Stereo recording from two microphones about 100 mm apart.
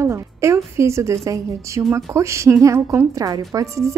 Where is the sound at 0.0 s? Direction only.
30° right (ahead or behind).